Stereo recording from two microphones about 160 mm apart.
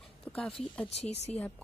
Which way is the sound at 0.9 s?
40° left (ahead or behind).